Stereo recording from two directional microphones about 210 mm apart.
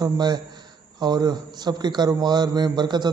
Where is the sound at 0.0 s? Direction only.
20° right (ahead or behind).